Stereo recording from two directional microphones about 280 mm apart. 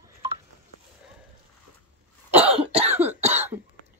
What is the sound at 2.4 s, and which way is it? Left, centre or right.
Cough, right.